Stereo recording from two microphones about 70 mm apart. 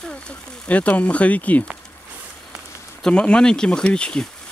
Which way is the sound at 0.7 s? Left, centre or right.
Left.